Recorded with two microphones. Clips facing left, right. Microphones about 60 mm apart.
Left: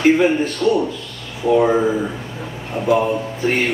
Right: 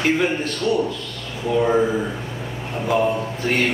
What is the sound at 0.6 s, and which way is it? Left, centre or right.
Speech, centre.